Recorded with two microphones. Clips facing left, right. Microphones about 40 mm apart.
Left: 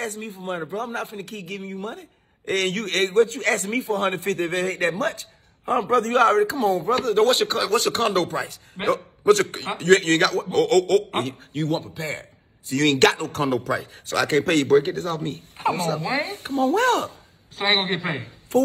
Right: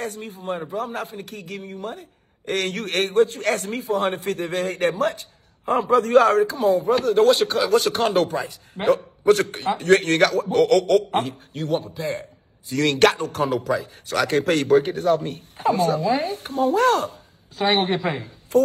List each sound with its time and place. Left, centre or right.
0.0 s a man's voice: left